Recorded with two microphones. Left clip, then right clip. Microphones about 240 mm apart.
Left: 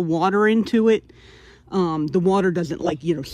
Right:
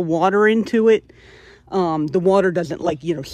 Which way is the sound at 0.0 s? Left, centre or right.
Centre.